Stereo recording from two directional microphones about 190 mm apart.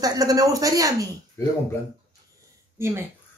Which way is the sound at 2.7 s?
15° right (ahead or behind).